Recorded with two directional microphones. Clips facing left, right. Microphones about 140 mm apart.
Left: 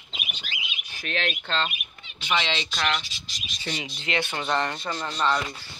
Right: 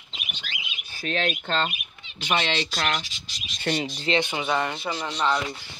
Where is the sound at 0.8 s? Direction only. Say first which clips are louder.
Right 3 dB; 35° right (ahead or behind).